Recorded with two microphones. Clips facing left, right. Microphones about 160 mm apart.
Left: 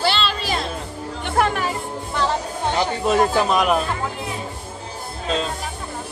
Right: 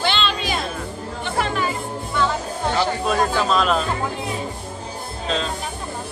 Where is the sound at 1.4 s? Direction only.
55° left (ahead or behind).